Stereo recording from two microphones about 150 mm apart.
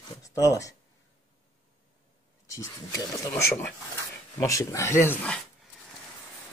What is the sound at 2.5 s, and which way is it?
Speech, 20° left (ahead or behind).